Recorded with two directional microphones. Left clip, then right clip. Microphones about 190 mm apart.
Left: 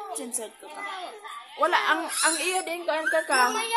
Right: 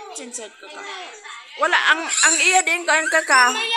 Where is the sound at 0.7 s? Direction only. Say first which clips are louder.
Right 2 dB; centre (ahead or behind).